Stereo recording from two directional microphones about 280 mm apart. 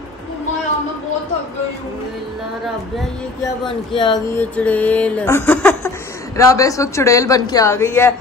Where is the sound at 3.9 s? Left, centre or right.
Centre.